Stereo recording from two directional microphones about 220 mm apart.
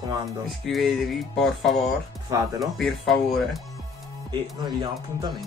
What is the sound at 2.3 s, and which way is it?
Speech, 15° right (ahead or behind).